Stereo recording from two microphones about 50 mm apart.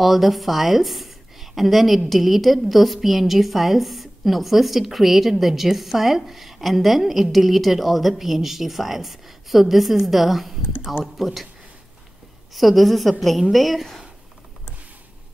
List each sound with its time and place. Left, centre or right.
0.0 s a woman's voice: centre
10.6 s speech: left
11.1 s a woman's voice: centre
12.5 s a woman's voice: centre